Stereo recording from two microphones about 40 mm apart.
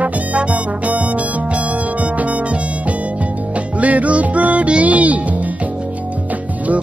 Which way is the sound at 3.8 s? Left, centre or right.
Right.